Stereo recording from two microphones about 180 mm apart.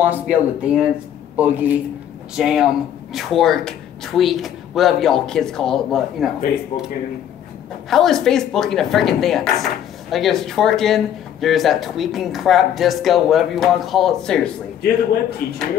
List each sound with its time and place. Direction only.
0.0 s speech: 10° right (ahead or behind)
7.9 s speech: centre (ahead or behind)
15.4 s speech: 60° left (ahead or behind)